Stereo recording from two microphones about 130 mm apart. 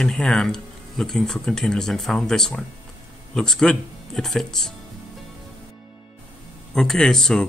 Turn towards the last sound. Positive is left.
turn(degrees=5)  # may be behind; listen again after turning